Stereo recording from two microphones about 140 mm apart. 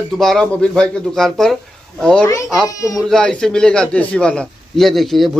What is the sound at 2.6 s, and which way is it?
Speech, 25° left (ahead or behind).